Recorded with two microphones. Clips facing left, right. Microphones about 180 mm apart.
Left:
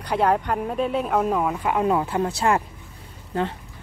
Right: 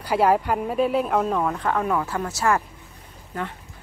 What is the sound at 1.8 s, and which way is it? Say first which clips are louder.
Speech: left 3 dB; 20° left (ahead or behind).